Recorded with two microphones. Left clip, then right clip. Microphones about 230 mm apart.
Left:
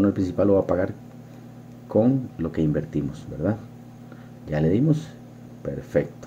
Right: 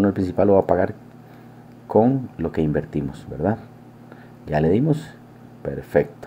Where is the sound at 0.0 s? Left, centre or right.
Centre.